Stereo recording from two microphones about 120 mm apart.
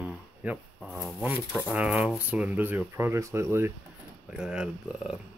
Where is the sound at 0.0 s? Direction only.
10° right (ahead or behind).